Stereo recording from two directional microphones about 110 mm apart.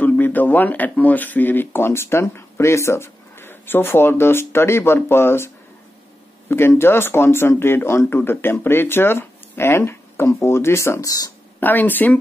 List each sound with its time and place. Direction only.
0.0 s speech: 15° left (ahead or behind)
6.5 s speech: 20° left (ahead or behind)
11.6 s speech: 15° left (ahead or behind)